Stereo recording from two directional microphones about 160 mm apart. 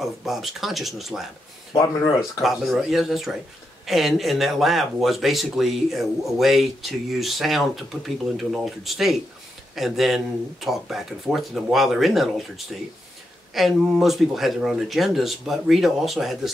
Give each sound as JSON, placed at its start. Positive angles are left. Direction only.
{"t": 0.0, "sound": "speech", "side_deg": 0}
{"t": 1.8, "sound": "speech", "side_deg": 20}
{"t": 2.4, "sound": "speech", "side_deg": 0}